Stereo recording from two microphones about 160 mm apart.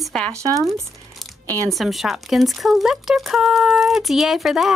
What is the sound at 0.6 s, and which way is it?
Crumpling, centre (ahead or behind).